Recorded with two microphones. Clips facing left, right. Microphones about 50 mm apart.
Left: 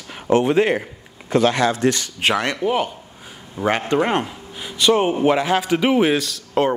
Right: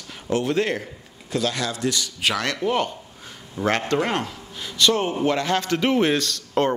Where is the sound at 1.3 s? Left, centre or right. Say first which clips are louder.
Left 8 dB; left.